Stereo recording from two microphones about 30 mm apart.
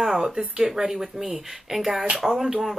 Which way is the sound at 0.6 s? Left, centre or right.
Centre.